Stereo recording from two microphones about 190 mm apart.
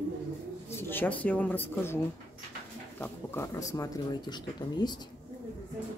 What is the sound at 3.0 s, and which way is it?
Speech, 15° left (ahead or behind).